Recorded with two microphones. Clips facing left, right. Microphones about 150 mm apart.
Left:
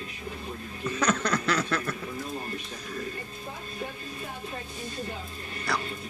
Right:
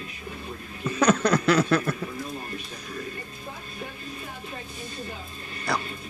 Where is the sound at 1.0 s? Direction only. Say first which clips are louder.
Right 6 dB; 10° right (ahead or behind).